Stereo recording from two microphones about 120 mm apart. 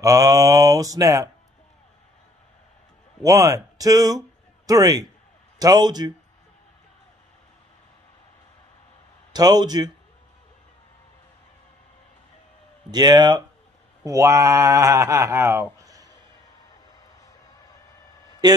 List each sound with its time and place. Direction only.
0.0 s speech: 30° right (ahead or behind)
3.3 s speech: 30° right (ahead or behind)
9.3 s speech: 35° right (ahead or behind)
12.9 s speech: 35° right (ahead or behind)
18.4 s a man's voice: 35° right (ahead or behind)